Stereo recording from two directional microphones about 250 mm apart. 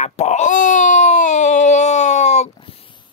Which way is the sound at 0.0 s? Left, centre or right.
Left.